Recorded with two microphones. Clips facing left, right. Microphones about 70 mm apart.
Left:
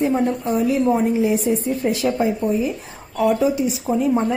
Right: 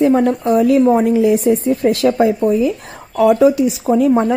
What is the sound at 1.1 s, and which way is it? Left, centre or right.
Speech, right.